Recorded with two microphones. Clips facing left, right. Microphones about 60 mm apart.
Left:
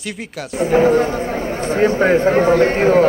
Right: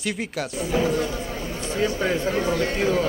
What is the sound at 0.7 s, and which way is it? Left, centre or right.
A man's voice, left.